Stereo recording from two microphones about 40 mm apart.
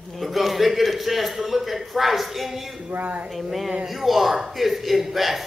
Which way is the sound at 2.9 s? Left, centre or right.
Right.